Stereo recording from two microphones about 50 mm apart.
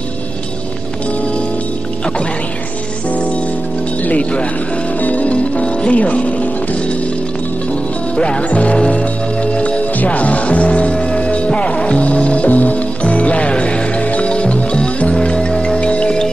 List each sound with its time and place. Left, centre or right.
4.0 s speech: left
5.0 s music: left
8.2 s music: left